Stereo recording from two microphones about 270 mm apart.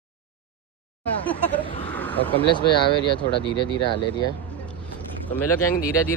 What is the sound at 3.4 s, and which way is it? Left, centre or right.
Speech, left.